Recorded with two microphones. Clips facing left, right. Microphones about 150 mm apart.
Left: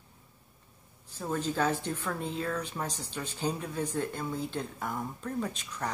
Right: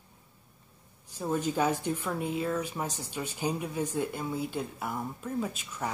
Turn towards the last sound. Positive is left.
turn(degrees=-5)  # may be behind; listen again after turning